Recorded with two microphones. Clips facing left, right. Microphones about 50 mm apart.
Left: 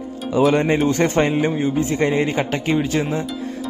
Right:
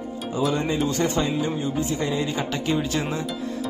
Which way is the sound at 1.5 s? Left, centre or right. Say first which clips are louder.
Left 5 dB; left.